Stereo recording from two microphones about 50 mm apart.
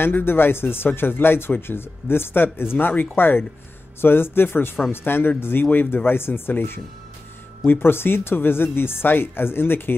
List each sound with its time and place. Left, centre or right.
0.0 s speech: left